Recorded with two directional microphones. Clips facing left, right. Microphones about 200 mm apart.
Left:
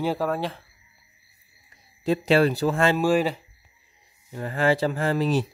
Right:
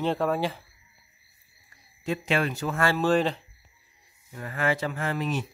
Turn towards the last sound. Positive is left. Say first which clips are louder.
# left 6 dB
turn(degrees=35)  # may be behind; listen again after turning